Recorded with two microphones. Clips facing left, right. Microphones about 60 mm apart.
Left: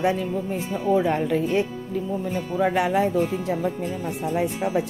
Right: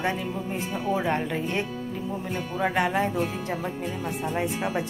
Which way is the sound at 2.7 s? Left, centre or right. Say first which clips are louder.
Left 2 dB; centre.